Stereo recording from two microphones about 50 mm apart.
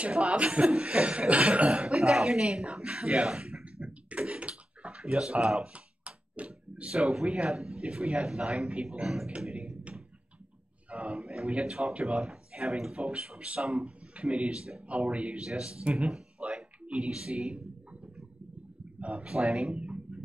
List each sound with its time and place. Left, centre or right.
0.0 s speech: right
2.0 s a sound: centre
7.3 s speech: centre
9.0 s speech: centre
9.4 s a sound: right
10.9 s speech: right
16.1 s a sound: centre
18.9 s speech: right
19.7 s music: right